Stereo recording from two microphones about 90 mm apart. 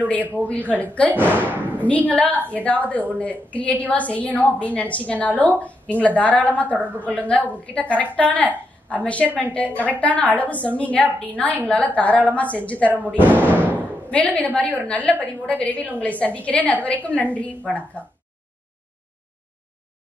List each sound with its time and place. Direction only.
0.4 s a woman's voice: 15° left (ahead or behind)
1.6 s a woman's voice: 20° right (ahead or behind)
1.9 s a woman's voice: 15° left (ahead or behind)
13.2 s a sound: 20° right (ahead or behind)
14.0 s a woman's voice: 15° left (ahead or behind)